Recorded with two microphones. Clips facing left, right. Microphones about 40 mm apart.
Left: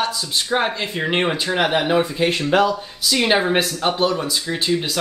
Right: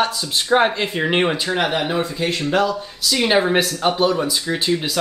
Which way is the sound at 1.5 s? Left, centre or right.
Centre.